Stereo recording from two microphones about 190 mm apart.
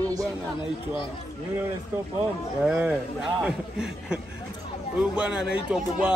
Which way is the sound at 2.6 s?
5° right (ahead or behind).